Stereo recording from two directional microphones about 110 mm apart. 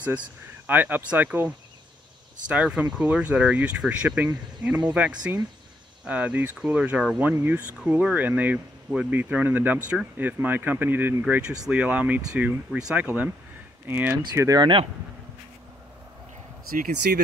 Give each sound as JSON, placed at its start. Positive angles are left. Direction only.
{"t": 0.7, "sound": "speech", "side_deg": -15}
{"t": 14.6, "sound": "speech", "side_deg": -50}